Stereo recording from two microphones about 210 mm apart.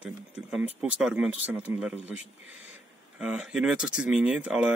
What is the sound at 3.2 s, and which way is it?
Speech, centre (ahead or behind).